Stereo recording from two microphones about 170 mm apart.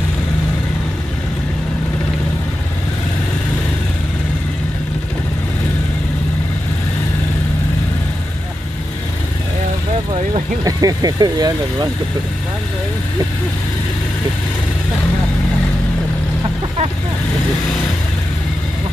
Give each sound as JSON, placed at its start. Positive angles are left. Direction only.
{"t": 10.6, "sound": "speech", "side_deg": -20}